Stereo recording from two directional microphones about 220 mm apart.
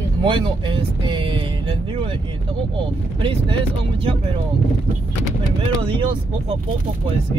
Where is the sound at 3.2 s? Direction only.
25° right (ahead or behind).